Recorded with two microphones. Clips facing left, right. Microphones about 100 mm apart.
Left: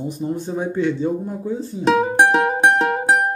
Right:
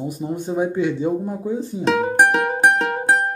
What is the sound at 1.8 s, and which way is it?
Music, 5° left (ahead or behind).